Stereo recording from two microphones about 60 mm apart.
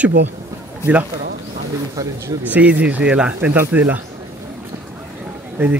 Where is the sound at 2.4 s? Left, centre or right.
Right.